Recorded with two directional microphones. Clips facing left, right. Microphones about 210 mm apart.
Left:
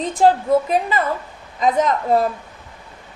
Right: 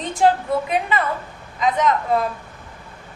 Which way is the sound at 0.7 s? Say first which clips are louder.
Left 2 dB; 35° left (ahead or behind).